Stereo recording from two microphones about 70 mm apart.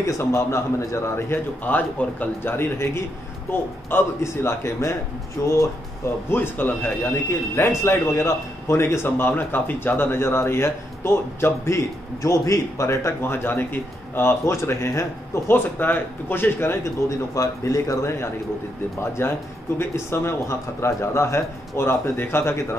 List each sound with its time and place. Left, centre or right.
0.0 s a man's voice: left
1.6 s a man's voice: left
5.4 s a man's voice: left
6.3 s a man's voice: left
17.3 s a man's voice: left